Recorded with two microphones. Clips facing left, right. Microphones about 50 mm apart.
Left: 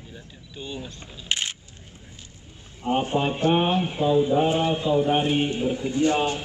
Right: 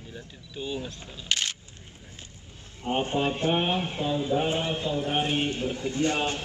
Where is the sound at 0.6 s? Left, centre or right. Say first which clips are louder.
Right 2 dB; centre.